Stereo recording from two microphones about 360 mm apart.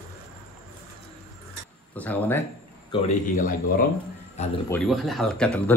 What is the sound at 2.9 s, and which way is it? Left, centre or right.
Speech, centre.